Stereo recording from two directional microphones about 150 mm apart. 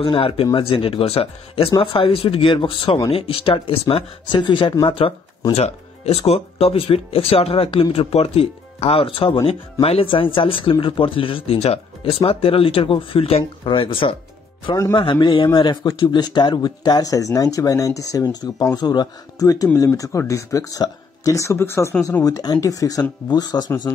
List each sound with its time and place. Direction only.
0.0 s speech: 35° left (ahead or behind)